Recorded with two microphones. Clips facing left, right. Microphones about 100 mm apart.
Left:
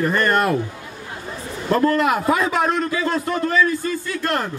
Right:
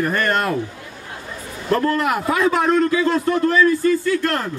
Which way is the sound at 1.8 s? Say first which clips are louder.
Left 3 dB; 20° left (ahead or behind).